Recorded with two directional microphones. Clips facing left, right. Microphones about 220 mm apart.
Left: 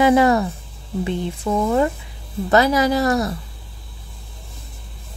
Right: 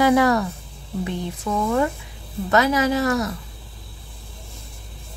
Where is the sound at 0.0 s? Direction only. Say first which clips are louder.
Left 2 dB; 25° left (ahead or behind).